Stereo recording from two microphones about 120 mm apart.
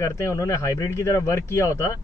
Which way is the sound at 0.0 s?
25° left (ahead or behind).